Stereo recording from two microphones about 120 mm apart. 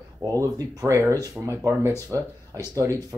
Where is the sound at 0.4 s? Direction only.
30° right (ahead or behind).